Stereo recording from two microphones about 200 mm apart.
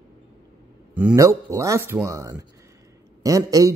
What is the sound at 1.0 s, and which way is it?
Speech, 10° right (ahead or behind).